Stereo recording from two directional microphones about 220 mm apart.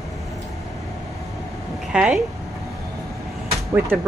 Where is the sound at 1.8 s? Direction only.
5° right (ahead or behind).